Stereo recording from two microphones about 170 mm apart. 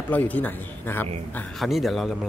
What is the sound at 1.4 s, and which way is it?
Speech, centre (ahead or behind).